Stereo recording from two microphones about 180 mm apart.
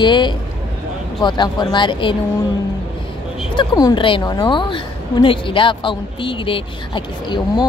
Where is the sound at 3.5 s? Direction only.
25° left (ahead or behind).